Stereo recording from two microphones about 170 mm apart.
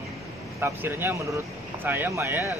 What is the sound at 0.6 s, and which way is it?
Speech, 15° right (ahead or behind).